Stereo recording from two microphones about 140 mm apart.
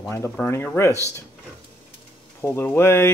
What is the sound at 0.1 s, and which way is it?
Speech, 15° left (ahead or behind).